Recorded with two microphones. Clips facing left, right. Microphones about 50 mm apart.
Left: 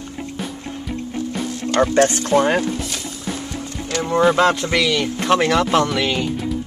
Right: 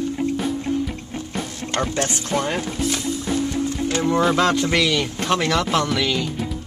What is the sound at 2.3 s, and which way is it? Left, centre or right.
Speech, left.